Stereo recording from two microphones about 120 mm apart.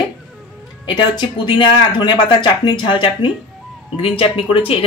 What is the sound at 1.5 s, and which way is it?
Speech, 40° left (ahead or behind).